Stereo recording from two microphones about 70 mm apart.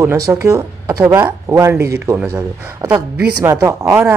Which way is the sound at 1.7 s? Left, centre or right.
Right.